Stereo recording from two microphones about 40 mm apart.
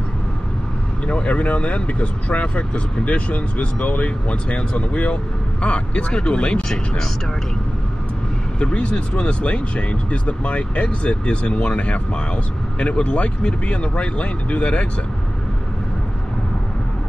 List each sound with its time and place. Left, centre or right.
1.0 s speech: left
8.5 s speech: left